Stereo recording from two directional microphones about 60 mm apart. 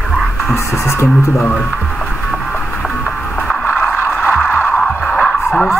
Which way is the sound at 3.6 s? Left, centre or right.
Left.